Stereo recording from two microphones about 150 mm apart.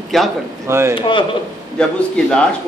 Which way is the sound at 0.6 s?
20° right (ahead or behind).